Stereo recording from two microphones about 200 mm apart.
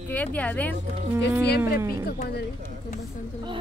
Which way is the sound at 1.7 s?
15° right (ahead or behind).